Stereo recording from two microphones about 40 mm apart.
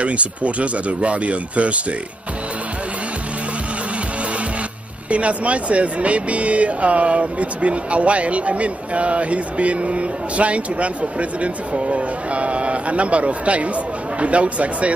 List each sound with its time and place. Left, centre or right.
0.0 s speech: right
5.1 s speech: right